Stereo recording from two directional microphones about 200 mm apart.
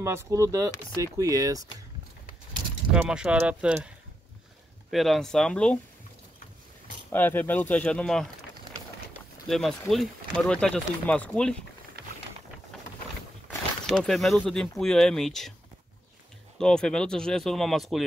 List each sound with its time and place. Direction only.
0.0 s speech: 15° right (ahead or behind)
2.9 s speech: 5° right (ahead or behind)
4.9 s speech: centre (ahead or behind)
7.1 s speech: 10° left (ahead or behind)
9.5 s speech: centre (ahead or behind)
13.8 s speech: centre (ahead or behind)
16.5 s speech: 5° left (ahead or behind)